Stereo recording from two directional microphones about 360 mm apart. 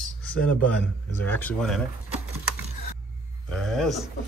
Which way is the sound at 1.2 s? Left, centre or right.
Centre.